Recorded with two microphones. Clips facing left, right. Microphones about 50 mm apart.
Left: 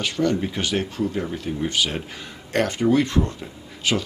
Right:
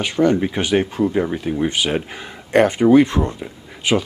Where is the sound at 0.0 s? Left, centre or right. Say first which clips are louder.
Right 6 dB; right.